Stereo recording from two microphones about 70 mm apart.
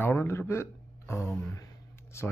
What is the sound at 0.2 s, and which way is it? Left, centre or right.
Speech, left.